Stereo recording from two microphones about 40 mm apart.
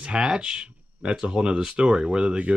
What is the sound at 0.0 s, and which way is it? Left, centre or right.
Speech, right.